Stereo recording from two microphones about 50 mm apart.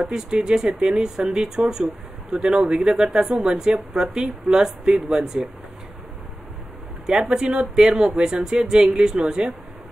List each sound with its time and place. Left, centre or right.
0.0 s speech: centre
7.1 s speech: centre